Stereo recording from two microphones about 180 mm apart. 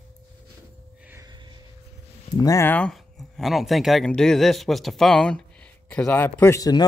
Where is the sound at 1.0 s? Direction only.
20° right (ahead or behind).